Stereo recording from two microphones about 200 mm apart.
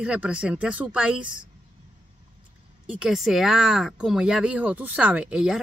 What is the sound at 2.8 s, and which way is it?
Speech, 5° right (ahead or behind).